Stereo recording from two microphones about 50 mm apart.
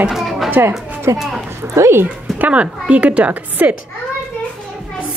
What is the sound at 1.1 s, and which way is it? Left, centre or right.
Speech, right.